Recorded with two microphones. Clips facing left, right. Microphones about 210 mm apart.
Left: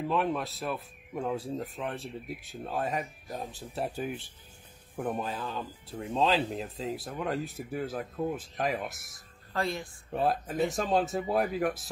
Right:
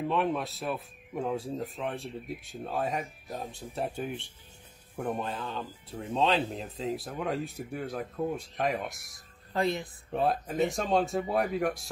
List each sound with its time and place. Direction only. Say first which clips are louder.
0.1 s speech: left 1 dB; centre (ahead or behind)
9.5 s a woman's voice: right 3 dB; 20° right (ahead or behind)
10.1 s speech: right 1 dB; centre (ahead or behind)